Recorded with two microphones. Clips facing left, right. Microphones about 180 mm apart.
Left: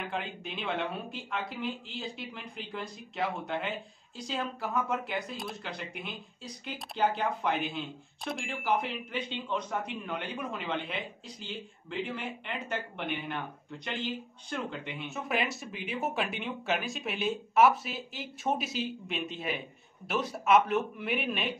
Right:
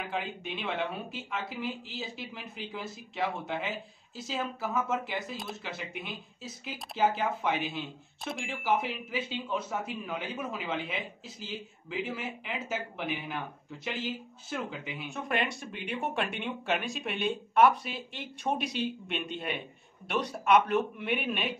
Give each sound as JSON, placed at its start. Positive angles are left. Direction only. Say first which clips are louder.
{"t": 0.0, "sound": "speech", "louder": "right 1 dB", "side_deg": 0}